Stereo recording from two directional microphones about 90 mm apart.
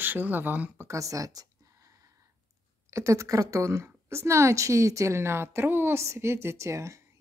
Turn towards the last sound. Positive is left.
turn(degrees=-35)  # may be behind; listen again after turning